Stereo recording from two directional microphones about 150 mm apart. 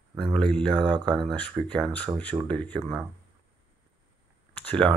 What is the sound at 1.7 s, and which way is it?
Speech, 10° left (ahead or behind).